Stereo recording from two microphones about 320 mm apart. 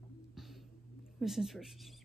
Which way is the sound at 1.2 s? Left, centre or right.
Centre.